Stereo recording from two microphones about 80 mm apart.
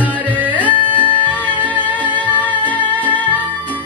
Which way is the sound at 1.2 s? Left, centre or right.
Centre.